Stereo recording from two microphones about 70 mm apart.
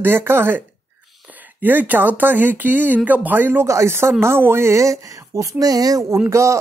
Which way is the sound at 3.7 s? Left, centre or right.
Right.